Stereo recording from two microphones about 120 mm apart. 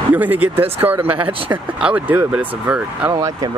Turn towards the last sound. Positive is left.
turn(degrees=-35)  # may be behind; listen again after turning